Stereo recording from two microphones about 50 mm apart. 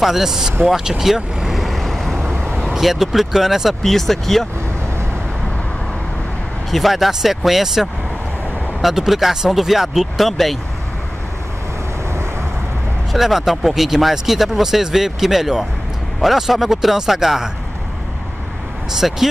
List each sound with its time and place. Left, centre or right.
0.0 s speech: centre
0.7 s vehicle: centre
2.6 s speech: centre
6.7 s speech: centre
13.1 s speech: centre
18.9 s speech: centre